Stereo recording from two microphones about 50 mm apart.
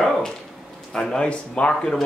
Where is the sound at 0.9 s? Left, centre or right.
Centre.